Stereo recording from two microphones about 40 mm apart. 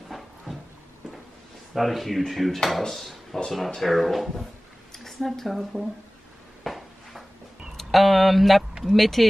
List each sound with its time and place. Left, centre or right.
1.8 s speech: centre
6.6 s a sound: centre
7.7 s speech: centre